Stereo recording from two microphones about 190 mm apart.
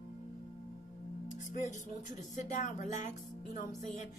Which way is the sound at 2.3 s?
40° left (ahead or behind).